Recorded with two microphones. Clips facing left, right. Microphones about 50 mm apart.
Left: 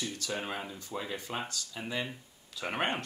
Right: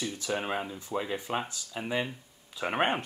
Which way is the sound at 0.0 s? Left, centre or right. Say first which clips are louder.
Right 4 dB; centre.